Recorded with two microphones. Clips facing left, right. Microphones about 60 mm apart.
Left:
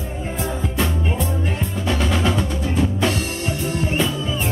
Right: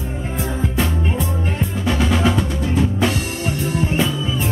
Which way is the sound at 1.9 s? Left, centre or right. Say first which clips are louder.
Right 3 dB; centre.